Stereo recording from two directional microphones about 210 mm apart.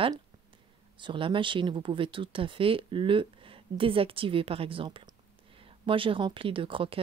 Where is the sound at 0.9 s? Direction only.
25° right (ahead or behind).